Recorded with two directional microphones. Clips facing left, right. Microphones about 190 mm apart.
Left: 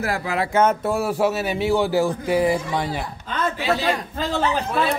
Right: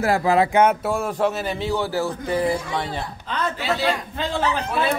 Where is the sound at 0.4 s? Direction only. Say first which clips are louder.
Left 1 dB; 15° right (ahead or behind).